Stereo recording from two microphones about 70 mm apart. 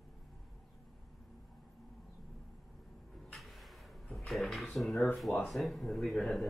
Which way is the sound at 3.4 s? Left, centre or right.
Centre.